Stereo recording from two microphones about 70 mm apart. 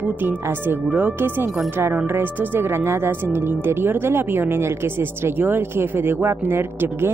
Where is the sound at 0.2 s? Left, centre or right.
Right.